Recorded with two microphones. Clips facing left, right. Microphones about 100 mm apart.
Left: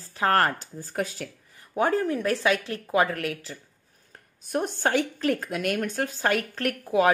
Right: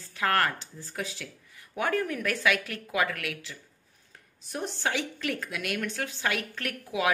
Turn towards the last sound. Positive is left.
turn(degrees=40)  # may be behind; listen again after turning